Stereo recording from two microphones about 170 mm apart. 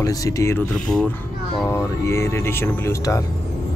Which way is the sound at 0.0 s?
20° left (ahead or behind).